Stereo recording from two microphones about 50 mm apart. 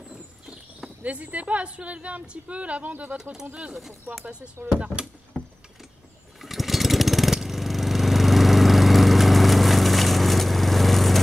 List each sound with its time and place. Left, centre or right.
0.8 s speech: right
4.7 s speech: centre
6.4 s lawn mower: centre